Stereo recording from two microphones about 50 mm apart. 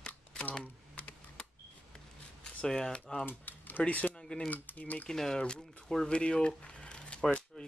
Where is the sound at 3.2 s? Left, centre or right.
Left.